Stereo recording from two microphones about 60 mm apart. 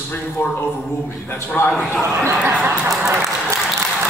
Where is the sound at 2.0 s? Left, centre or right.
Right.